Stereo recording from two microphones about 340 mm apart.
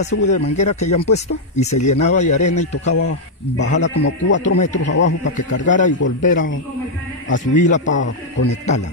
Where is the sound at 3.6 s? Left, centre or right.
Left.